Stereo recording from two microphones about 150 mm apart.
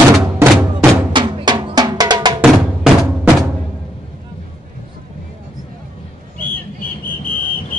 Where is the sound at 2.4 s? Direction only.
5° right (ahead or behind).